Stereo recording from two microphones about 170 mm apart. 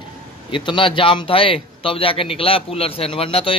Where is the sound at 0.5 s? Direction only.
30° left (ahead or behind).